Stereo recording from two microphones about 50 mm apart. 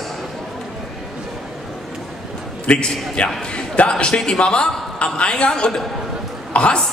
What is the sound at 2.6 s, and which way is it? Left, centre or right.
Speech, left.